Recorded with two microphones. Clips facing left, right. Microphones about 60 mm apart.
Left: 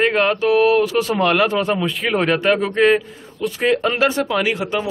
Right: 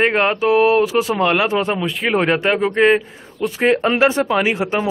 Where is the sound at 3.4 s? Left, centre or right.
Right.